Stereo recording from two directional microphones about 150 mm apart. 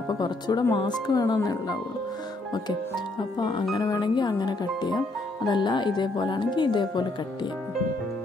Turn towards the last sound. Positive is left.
turn(degrees=30)  # may be behind; listen again after turning